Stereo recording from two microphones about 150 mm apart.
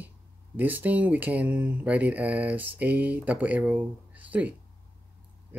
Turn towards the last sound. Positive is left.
turn(degrees=-10)  # may be behind; listen again after turning